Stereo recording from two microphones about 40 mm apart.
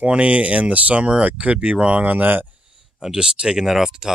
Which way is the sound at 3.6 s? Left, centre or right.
Centre.